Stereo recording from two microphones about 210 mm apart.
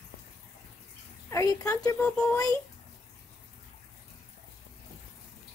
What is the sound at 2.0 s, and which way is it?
Speech, 5° left (ahead or behind).